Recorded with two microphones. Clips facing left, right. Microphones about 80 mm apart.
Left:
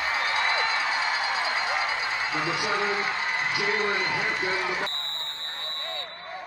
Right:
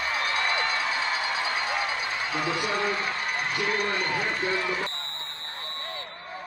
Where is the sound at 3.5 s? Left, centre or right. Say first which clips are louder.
Left 1 dB; centre.